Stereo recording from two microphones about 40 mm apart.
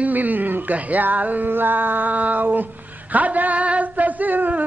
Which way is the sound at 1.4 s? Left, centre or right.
Right.